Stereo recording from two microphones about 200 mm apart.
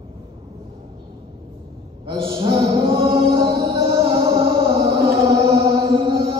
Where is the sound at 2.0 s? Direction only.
25° right (ahead or behind).